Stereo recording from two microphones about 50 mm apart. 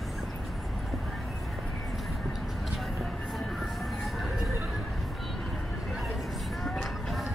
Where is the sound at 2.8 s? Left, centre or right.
Centre.